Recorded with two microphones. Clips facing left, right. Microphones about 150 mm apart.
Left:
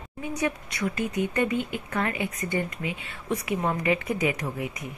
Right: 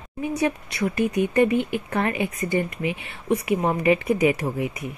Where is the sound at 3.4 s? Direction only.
20° right (ahead or behind).